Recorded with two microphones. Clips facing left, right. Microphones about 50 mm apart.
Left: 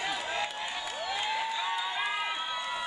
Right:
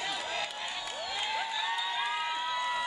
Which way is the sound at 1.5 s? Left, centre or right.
Centre.